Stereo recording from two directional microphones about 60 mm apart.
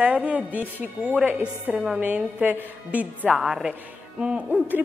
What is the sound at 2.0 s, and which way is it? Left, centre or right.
A woman's voice, right.